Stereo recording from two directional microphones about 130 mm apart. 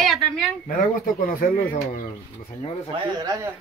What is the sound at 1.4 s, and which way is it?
Speech, 90° left.